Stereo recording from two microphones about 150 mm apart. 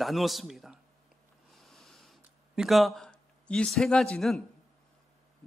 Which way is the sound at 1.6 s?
Centre (ahead or behind).